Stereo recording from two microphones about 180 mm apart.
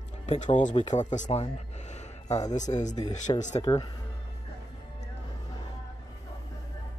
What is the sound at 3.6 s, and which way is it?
Speech, 25° left (ahead or behind).